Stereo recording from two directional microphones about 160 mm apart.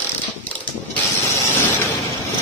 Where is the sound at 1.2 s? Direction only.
20° left (ahead or behind).